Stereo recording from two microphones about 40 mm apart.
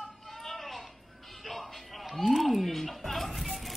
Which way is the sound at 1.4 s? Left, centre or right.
Centre.